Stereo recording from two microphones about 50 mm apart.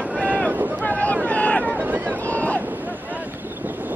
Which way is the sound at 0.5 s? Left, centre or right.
Right.